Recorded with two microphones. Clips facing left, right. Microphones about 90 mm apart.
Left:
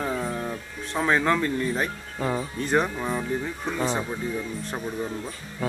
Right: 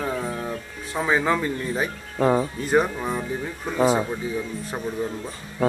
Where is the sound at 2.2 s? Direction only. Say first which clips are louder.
Right 8 dB; 35° right (ahead or behind).